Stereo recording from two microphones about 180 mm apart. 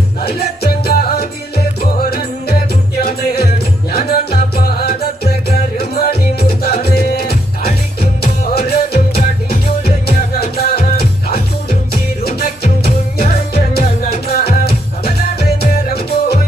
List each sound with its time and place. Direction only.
0.2 s music: 60° left (ahead or behind)
14.1 s music: 60° left (ahead or behind)